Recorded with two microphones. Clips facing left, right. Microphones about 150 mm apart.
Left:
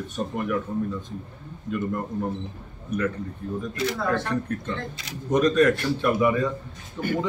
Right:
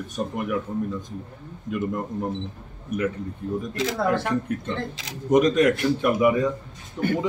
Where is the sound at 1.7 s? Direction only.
10° right (ahead or behind).